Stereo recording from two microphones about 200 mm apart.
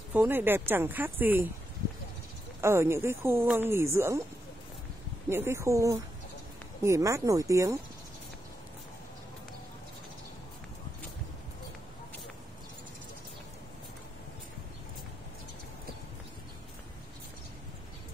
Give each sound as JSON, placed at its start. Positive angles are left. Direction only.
{"t": 0.1, "sound": "speech", "side_deg": -10}
{"t": 2.6, "sound": "speech", "side_deg": -15}
{"t": 5.3, "sound": "speech", "side_deg": -10}